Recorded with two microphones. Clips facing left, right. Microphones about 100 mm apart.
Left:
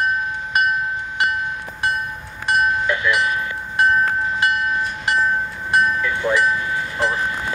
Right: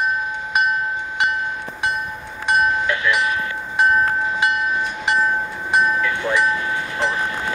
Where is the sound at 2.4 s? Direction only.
5° left (ahead or behind).